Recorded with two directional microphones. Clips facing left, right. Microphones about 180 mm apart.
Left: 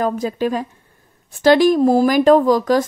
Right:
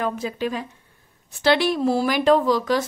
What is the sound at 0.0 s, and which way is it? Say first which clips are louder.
A woman's voice: left 6 dB; 40° left (ahead or behind).